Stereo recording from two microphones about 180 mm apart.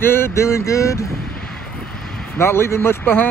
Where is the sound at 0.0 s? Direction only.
15° left (ahead or behind).